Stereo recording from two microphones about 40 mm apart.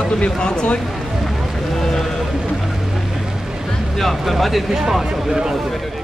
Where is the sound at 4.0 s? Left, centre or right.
Centre.